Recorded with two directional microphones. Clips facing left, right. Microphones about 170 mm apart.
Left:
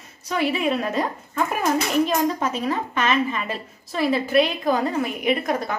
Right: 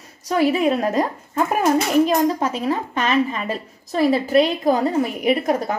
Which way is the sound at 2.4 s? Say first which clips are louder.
Right 2 dB; 35° right (ahead or behind).